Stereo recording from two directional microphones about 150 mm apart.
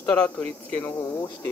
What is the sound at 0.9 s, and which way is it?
Speech, 25° left (ahead or behind).